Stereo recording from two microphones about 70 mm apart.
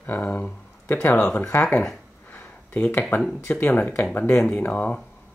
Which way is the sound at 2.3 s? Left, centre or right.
Left.